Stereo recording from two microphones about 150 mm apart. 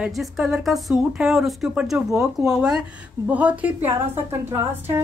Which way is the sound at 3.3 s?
10° right (ahead or behind).